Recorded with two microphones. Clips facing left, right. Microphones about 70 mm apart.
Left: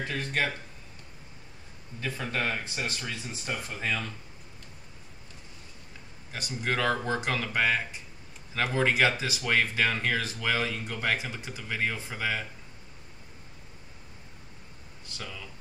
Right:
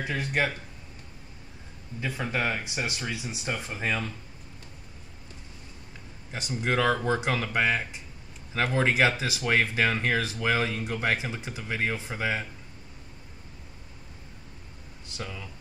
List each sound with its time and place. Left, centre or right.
0.0 s speech: centre
2.0 s speech: centre
6.3 s speech: centre
15.1 s speech: centre